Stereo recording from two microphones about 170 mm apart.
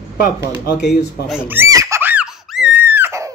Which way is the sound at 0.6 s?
70° left (ahead or behind).